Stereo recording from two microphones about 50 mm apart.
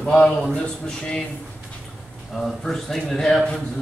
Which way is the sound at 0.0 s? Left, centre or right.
Centre.